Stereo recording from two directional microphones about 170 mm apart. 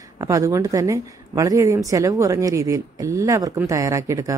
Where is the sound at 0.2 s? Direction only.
20° right (ahead or behind).